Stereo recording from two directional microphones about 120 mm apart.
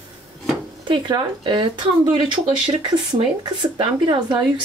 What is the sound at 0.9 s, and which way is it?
Speech, 40° right (ahead or behind).